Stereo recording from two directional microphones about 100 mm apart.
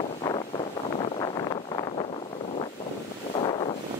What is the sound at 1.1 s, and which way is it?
Vehicle, 55° left (ahead or behind).